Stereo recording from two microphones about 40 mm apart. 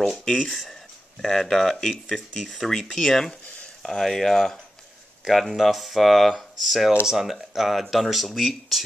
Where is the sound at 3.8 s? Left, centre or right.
Centre.